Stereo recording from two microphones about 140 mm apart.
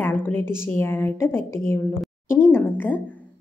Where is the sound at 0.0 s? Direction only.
15° left (ahead or behind).